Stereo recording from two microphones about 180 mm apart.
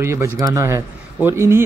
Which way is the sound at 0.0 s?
15° right (ahead or behind).